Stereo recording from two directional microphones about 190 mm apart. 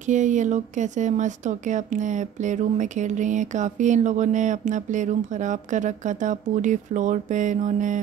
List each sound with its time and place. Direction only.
0.1 s speech: 40° right (ahead or behind)